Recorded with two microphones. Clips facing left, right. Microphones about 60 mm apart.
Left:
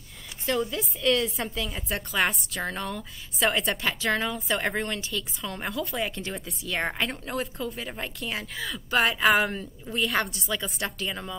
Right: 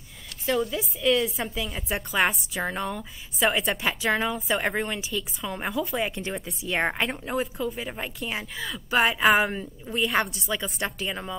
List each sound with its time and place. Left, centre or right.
0.5 s a woman's voice: centre
6.6 s a woman's voice: centre